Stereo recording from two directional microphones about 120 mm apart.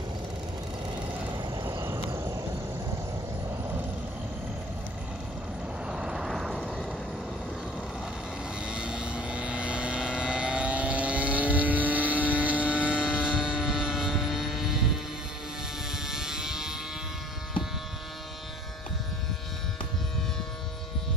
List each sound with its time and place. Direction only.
1.3 s vehicle: 45° right (ahead or behind)
1.6 s a sound: 20° right (ahead or behind)
5.9 s vehicle: 5° right (ahead or behind)
8.6 s vehicle: 10° right (ahead or behind)
15.9 s vehicle: 5° right (ahead or behind)